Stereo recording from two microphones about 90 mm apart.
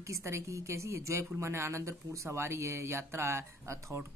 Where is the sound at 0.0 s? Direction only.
35° right (ahead or behind).